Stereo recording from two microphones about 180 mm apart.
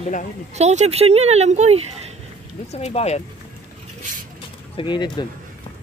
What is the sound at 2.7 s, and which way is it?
Speech, 35° left (ahead or behind).